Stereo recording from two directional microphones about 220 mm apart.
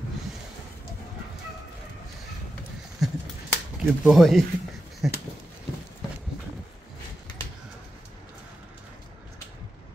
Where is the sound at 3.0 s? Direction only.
Centre (ahead or behind).